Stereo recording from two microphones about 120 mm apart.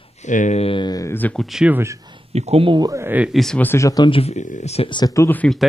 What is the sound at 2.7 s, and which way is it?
Speech, 35° right (ahead or behind).